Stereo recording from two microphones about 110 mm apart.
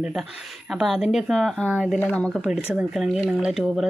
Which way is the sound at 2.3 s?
10° right (ahead or behind).